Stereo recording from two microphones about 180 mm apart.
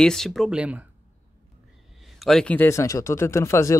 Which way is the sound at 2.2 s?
5° left (ahead or behind).